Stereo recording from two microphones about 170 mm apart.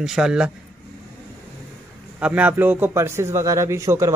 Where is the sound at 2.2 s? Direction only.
10° right (ahead or behind).